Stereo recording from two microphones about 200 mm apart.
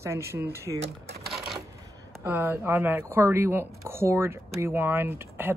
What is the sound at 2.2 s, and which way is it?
Speech, 10° right (ahead or behind).